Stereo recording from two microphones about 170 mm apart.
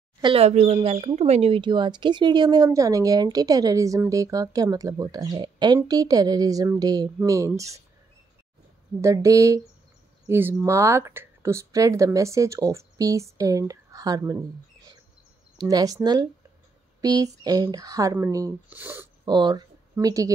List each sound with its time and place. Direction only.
0.2 s speech: 35° right (ahead or behind); by 7.8 s 20° right (ahead or behind)
9.0 s speech: 20° right (ahead or behind)
15.5 s speech: 20° right (ahead or behind)
19.2 s speech: 25° right (ahead or behind)